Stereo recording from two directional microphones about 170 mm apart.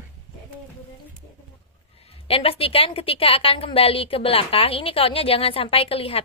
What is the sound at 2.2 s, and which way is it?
A woman's voice, 35° left (ahead or behind).